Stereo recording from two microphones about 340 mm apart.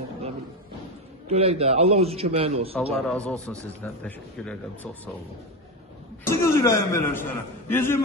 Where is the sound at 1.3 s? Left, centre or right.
Centre.